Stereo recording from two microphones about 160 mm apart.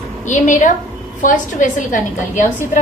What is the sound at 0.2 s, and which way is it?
A woman's voice, 50° left (ahead or behind).